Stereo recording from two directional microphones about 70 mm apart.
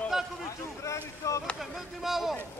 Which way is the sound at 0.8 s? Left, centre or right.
Left.